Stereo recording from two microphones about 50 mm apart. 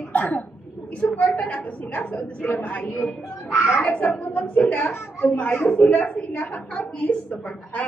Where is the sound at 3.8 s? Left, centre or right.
Left.